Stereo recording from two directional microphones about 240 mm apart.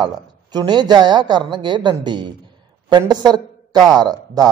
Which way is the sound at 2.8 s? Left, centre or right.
Centre.